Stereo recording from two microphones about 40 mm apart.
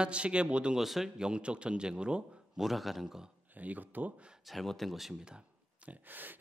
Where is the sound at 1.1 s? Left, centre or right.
Right.